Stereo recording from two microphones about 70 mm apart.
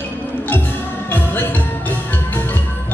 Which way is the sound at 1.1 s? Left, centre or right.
Left.